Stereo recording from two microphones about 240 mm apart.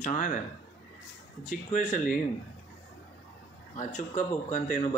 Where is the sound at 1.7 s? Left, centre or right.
Left.